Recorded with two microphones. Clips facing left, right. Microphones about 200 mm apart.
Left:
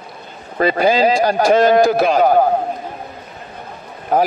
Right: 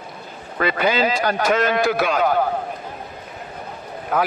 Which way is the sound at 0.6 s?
35° left (ahead or behind).